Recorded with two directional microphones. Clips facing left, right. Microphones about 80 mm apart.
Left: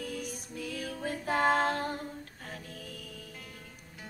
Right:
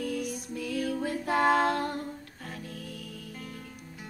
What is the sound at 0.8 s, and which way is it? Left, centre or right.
Music, centre.